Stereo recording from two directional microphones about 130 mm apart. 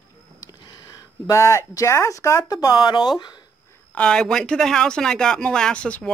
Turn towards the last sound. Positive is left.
turn(degrees=10)  # may be behind; listen again after turning